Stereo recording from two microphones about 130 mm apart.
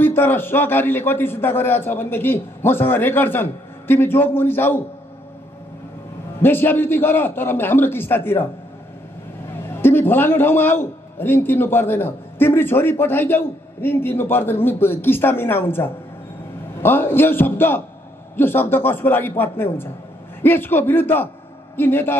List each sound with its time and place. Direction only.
0.0 s a man's voice: 15° left (ahead or behind)
6.4 s a man's voice: 15° left (ahead or behind)
9.8 s a man's voice: 15° left (ahead or behind)